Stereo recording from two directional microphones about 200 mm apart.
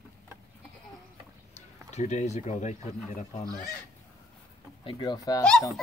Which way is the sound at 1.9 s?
35° left (ahead or behind).